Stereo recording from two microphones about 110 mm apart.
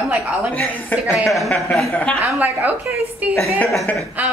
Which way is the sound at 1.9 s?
15° left (ahead or behind).